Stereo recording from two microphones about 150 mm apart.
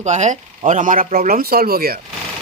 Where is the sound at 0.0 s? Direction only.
50° right (ahead or behind); by 2.0 s 85° right.